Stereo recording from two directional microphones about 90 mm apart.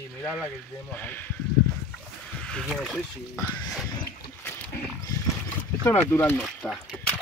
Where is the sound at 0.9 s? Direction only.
20° left (ahead or behind).